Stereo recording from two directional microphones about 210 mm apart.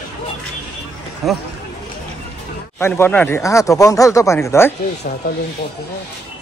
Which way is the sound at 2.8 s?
10° left (ahead or behind).